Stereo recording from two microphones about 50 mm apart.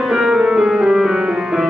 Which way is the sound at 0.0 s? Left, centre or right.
Centre.